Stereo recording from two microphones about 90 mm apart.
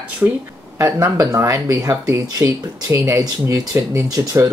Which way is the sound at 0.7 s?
30° right (ahead or behind).